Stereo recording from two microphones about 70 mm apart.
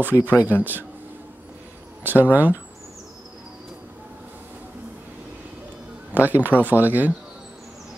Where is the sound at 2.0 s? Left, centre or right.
Right.